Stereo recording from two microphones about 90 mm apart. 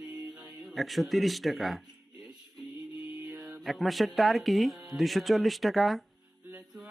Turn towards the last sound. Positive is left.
turn(degrees=0)  # may be behind; listen again after turning